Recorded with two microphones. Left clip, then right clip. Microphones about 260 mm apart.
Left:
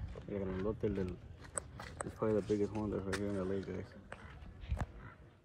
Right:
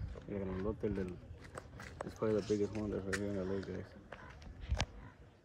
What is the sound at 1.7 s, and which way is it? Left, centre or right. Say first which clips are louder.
Speech: right 2 dB; centre.